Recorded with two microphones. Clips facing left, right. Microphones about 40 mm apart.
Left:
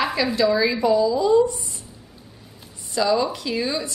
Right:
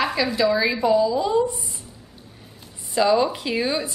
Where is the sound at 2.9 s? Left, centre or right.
Right.